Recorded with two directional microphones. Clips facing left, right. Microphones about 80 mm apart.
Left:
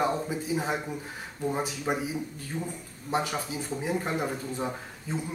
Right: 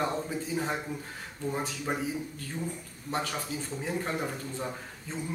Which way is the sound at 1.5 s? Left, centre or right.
Centre.